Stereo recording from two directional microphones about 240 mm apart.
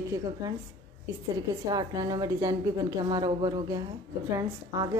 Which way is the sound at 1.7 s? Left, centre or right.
Centre.